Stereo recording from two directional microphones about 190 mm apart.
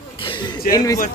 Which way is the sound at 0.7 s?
20° left (ahead or behind).